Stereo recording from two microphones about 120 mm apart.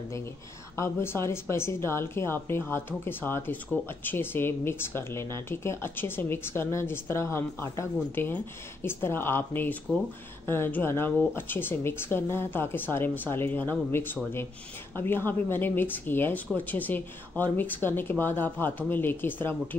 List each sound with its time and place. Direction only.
0.7 s a woman's voice: 20° left (ahead or behind)